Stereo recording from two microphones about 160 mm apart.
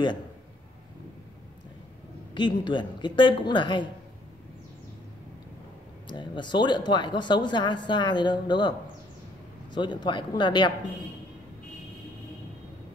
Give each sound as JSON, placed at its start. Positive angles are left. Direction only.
{"t": 2.3, "sound": "speech", "side_deg": 30}
{"t": 6.0, "sound": "speech", "side_deg": 30}